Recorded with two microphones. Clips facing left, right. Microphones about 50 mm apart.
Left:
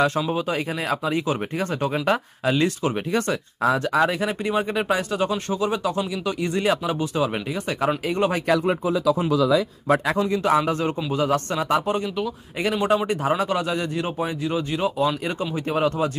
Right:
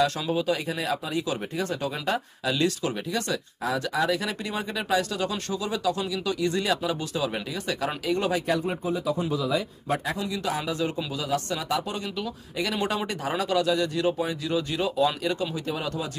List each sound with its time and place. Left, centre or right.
0.0 s speech: left
0.8 s speech: left
4.2 s speech: left
8.5 s speech: left
10.1 s speech: left
15.7 s speech: left